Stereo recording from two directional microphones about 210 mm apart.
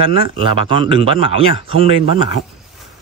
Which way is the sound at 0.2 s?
25° right (ahead or behind).